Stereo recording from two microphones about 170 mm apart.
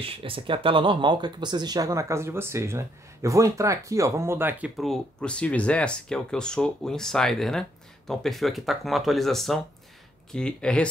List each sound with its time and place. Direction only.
0.0 s speech: 30° right (ahead or behind); by 10.9 s 5° left (ahead or behind)